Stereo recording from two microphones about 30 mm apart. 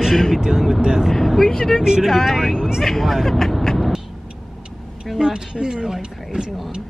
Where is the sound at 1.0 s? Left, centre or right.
Centre.